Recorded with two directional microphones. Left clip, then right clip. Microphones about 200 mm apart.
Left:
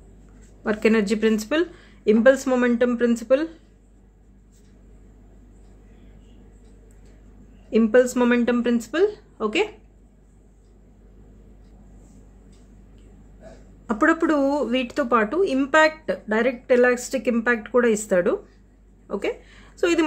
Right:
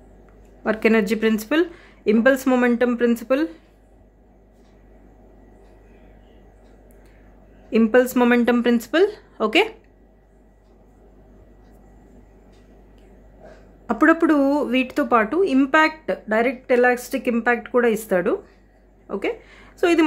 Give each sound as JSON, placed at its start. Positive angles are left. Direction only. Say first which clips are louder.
{"t": 0.7, "sound": "speech", "louder": "right 2 dB", "side_deg": -15}
{"t": 7.7, "sound": "a woman's voice", "louder": "right 1 dB", "side_deg": -20}
{"t": 13.8, "sound": "speech", "louder": "right 3 dB", "side_deg": -15}